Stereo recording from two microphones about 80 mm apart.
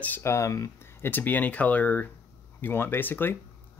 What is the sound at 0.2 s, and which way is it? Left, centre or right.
Speech, left.